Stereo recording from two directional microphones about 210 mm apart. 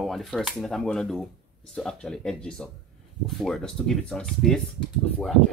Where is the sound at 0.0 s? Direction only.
Centre (ahead or behind).